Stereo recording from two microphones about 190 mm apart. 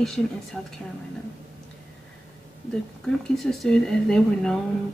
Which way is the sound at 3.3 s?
Centre (ahead or behind).